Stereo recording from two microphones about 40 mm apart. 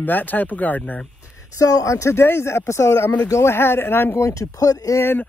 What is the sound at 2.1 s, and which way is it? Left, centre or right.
Speech, left.